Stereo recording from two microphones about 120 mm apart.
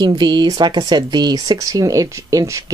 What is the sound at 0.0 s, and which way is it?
Speech, 35° right (ahead or behind).